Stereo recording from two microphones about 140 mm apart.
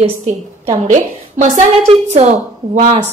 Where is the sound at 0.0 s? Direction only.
50° right (ahead or behind).